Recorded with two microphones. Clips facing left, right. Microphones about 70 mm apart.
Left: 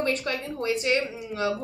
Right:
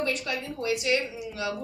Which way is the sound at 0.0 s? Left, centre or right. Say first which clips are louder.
Left 2 dB; left.